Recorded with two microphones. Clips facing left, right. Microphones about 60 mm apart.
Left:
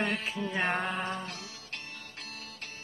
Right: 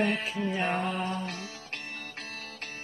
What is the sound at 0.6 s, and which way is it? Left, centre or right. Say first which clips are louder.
Mantra: left 1 dB; left.